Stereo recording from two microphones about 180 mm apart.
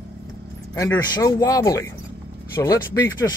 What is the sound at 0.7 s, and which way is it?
A man's voice, 15° left (ahead or behind).